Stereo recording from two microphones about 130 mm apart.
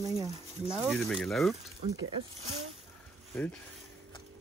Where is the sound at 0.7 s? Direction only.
5° right (ahead or behind).